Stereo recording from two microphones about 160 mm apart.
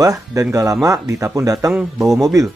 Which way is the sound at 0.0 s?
20° right (ahead or behind).